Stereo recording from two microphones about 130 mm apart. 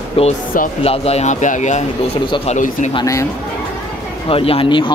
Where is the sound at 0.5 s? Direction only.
90° left.